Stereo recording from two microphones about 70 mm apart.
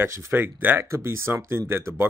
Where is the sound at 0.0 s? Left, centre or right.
Right.